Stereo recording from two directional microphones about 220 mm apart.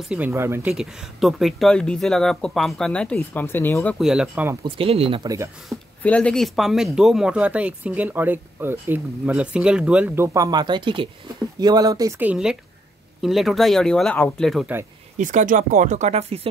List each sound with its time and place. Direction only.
0.1 s speech: 10° right (ahead or behind); by 3.9 s 10° left (ahead or behind)
4.0 s speech: 5° right (ahead or behind)
4.6 s speech: 25° right (ahead or behind)
5.7 s speech: 5° left (ahead or behind)
15.1 s speech: 35° right (ahead or behind)